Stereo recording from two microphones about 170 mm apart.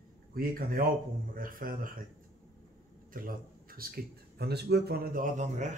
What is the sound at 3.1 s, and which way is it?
Speech, 55° right (ahead or behind).